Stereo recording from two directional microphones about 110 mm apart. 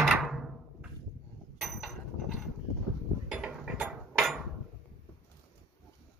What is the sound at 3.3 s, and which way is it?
Mechanisms, 10° right (ahead or behind).